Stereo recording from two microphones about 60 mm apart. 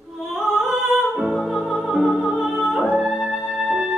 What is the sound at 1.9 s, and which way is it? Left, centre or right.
Music, centre.